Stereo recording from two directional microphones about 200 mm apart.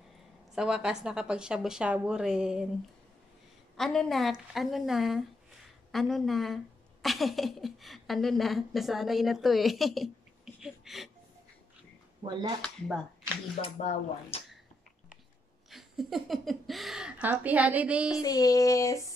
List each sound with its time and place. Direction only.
0.6 s speech: 5° right (ahead or behind)
3.7 s a woman's voice: centre (ahead or behind)
12.6 s speech: 5° left (ahead or behind)
13.6 s speech: 30° left (ahead or behind)
15.7 s speech: centre (ahead or behind)
18.2 s a sound: 20° left (ahead or behind)